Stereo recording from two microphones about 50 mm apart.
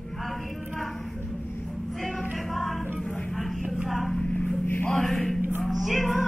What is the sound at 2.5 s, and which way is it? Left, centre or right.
Music, centre.